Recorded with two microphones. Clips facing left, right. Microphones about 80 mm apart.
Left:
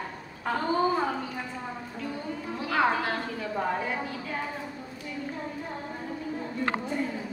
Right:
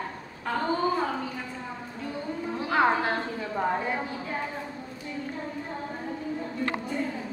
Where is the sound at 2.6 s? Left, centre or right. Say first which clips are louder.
Right 2 dB; right.